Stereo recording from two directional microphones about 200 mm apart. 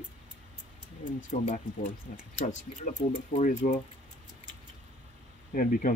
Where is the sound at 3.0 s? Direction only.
25° left (ahead or behind).